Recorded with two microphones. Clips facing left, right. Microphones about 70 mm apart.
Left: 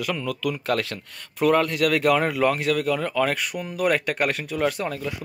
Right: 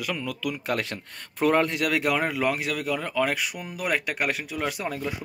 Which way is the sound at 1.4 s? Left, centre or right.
Right.